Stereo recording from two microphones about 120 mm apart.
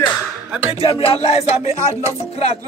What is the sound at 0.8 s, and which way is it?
Music, 50° left (ahead or behind).